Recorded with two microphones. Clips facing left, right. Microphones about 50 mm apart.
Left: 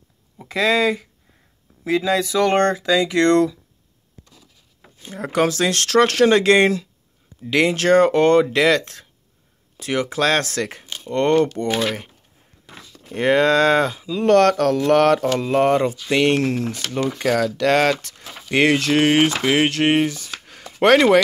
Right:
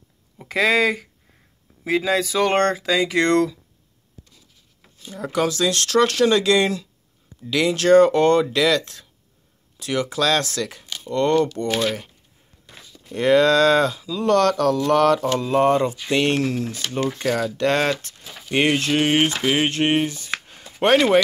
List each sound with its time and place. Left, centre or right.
0.4 s speech: centre
5.0 s speech: left
13.1 s speech: left
16.1 s speech: left
18.5 s speech: left
20.4 s chopping: left